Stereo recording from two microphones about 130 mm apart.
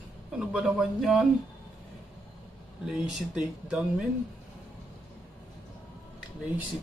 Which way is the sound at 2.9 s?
10° right (ahead or behind).